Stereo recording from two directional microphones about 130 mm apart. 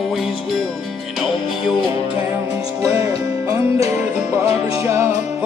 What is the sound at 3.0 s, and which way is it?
Music, 25° right (ahead or behind).